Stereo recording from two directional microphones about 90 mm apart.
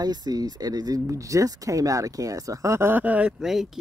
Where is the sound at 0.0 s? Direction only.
50° right (ahead or behind).